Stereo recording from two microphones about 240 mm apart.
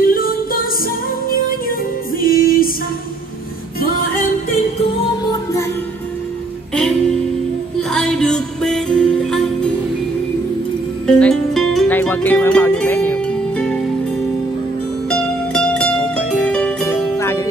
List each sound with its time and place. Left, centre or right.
0.0 s music: left
2.1 s music: left
6.7 s music: centre
11.1 s music: centre
15.0 s music: centre